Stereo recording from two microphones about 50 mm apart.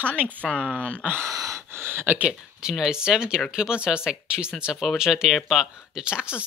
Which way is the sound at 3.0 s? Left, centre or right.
Centre.